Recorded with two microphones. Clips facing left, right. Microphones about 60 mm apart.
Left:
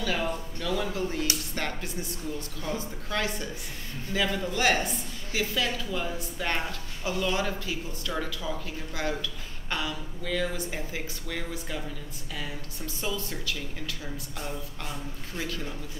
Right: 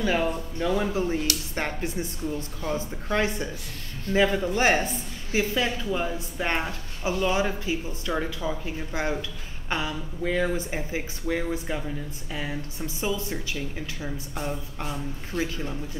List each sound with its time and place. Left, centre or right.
0.0 s a woman's voice: right